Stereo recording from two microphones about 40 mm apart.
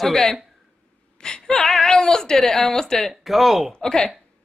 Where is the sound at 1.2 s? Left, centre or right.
Centre.